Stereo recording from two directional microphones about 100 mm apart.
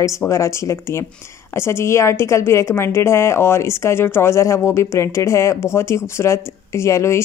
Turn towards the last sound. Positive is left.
turn(degrees=30)  # may be behind; listen again after turning